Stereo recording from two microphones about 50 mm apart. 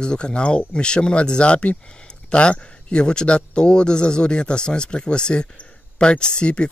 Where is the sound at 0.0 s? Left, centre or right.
Centre.